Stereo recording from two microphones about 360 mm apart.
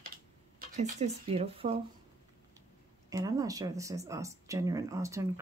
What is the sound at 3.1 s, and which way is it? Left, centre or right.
Speech, centre.